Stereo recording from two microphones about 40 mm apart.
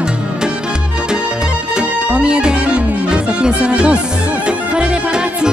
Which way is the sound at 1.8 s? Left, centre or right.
Right.